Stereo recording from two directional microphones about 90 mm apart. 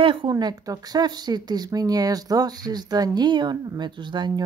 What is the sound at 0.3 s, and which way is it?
Speech, 45° right (ahead or behind).